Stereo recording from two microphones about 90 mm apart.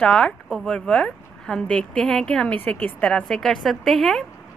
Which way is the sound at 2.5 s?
20° left (ahead or behind).